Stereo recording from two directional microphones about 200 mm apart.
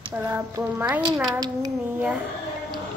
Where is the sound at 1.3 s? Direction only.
20° right (ahead or behind).